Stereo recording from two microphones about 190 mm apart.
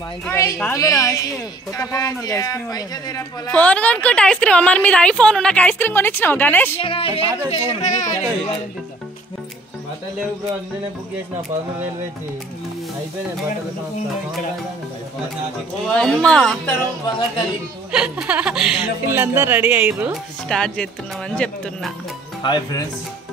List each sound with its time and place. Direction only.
0.3 s a woman's voice: 15° left (ahead or behind)
3.5 s a woman's voice: 5° left (ahead or behind)
6.8 s a man's voice: 30° left (ahead or behind)
7.5 s speech: 40° left (ahead or behind)
15.9 s a woman's voice: 5° left (ahead or behind)
17.9 s speech: 5° right (ahead or behind)
20.4 s a woman's voice: 5° left (ahead or behind)
22.4 s a man's voice: 25° left (ahead or behind)